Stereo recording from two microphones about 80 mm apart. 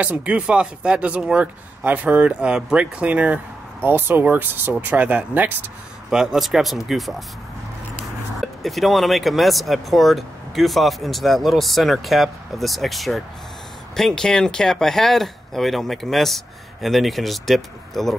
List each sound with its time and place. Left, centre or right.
0.0 s speech: centre
6.0 s speech: centre
8.4 s speech: centre